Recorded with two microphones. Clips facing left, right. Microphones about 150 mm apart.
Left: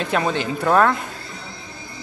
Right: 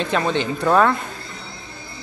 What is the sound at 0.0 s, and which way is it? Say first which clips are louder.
Speech: right 1 dB; 5° left (ahead or behind).